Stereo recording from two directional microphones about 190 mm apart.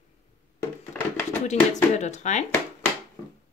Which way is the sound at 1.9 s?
35° left (ahead or behind).